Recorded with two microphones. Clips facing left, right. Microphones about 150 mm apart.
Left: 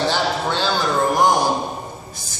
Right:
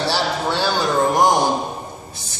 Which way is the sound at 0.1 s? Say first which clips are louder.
Even; 10° right (ahead or behind).